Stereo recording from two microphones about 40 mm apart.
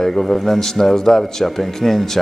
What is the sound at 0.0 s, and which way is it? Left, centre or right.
Speech, centre.